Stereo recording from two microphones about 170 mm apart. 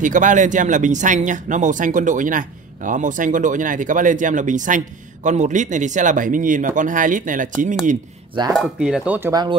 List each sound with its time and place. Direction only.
0.0 s speech: 50° right (ahead or behind)
8.5 s speech: 5° right (ahead or behind)
9.3 s speech: 25° right (ahead or behind)